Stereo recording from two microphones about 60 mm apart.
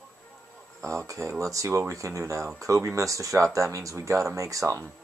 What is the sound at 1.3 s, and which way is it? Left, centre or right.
Speech, right.